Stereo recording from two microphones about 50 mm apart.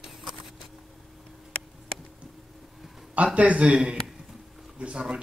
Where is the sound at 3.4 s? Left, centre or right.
Right.